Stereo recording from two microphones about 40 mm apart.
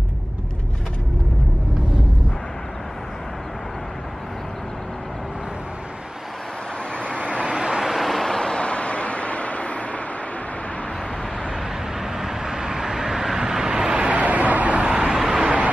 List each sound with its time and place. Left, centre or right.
7.5 s vehicle: centre
7.8 s vehicle: centre
8.4 s vehicle: left
12.0 s vehicle: centre
13.9 s vehicle: right
15.1 s vehicle: centre